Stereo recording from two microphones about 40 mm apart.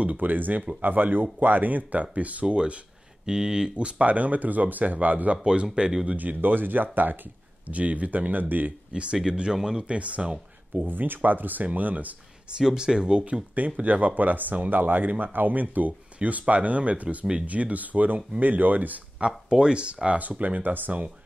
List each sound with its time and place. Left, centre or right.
0.2 s speech: right
3.3 s speech: centre
3.7 s speech: right
5.4 s speech: right
6.0 s speech: right
7.6 s speech: right
8.9 s speech: right
9.9 s speech: right
10.9 s speech: right
12.5 s speech: centre; by 18.9 s right
19.1 s speech: right
20.2 s speech: right